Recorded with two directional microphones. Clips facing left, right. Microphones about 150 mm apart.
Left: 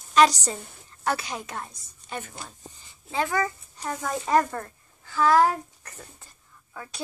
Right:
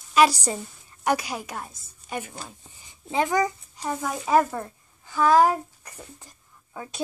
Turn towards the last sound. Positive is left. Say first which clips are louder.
# right 3 dB
turn(degrees=-20)  # may be behind; listen again after turning